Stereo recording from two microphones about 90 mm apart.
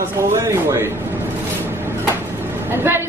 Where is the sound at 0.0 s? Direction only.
30° right (ahead or behind).